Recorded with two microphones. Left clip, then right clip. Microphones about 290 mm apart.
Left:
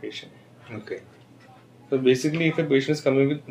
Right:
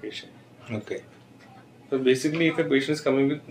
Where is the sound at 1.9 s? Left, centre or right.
Left.